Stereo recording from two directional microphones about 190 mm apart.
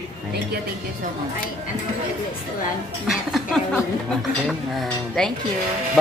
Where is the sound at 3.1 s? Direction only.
Centre (ahead or behind).